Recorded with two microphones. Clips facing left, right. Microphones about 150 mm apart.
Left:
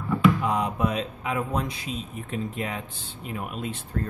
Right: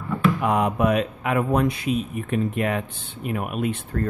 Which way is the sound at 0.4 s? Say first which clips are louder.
Right 4 dB; 60° right (ahead or behind).